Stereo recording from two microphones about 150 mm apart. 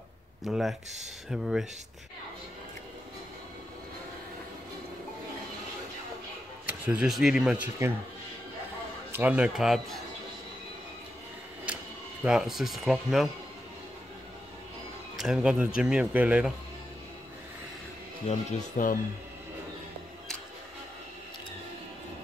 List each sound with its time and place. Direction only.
0.4 s speech: centre (ahead or behind)
6.9 s speech: 5° right (ahead or behind)
9.1 s speech: 10° right (ahead or behind)
11.6 s speech: 10° right (ahead or behind)
15.1 s speech: centre (ahead or behind)
18.8 s speech: 65° left (ahead or behind)